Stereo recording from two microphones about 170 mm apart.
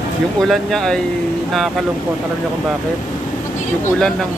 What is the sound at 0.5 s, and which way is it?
Speech, centre (ahead or behind).